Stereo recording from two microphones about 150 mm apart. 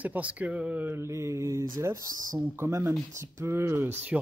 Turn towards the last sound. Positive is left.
turn(degrees=-15)  # may be behind; listen again after turning